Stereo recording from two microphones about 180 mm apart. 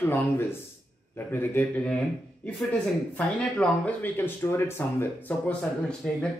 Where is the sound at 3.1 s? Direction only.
10° left (ahead or behind).